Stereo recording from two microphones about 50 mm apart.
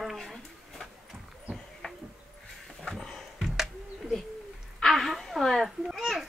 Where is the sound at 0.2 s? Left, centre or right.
Centre.